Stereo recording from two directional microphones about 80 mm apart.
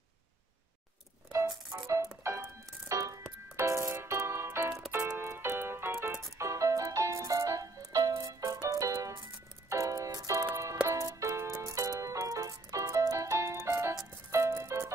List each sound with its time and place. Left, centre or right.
2.3 s music: right